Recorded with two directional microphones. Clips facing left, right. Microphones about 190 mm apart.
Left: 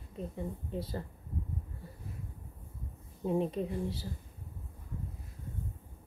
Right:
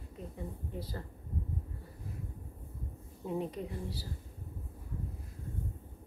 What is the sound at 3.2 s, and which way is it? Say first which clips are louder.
Speech: left 5 dB; 25° left (ahead or behind).